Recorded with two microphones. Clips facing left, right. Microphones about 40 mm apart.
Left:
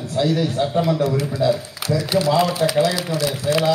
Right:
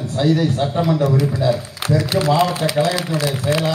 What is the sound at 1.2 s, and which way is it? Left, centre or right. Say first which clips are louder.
A man's voice: right 1 dB; right.